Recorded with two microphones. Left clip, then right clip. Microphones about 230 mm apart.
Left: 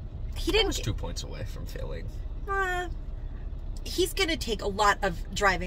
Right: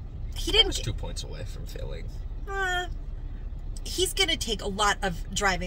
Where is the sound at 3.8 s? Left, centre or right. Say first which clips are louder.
Right 1 dB; centre.